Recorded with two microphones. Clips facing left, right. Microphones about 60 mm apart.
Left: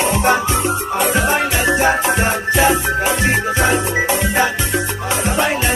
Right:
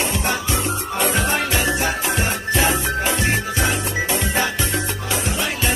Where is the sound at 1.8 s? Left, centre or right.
Left; by 4.8 s centre.